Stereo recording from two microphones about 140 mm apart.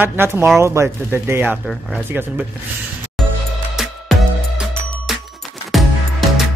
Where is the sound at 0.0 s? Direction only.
15° right (ahead or behind).